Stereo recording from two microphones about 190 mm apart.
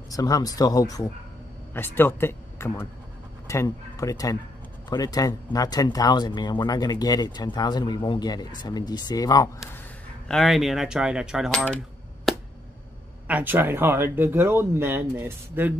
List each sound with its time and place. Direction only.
0.1 s speech: 20° left (ahead or behind)
10.2 s speech: centre (ahead or behind)
12.3 s a sound: centre (ahead or behind)
13.3 s speech: 10° right (ahead or behind)